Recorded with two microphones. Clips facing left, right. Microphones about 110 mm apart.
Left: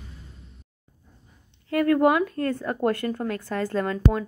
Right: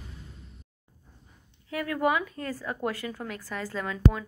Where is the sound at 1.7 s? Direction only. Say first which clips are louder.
Left 7 dB; 55° left (ahead or behind).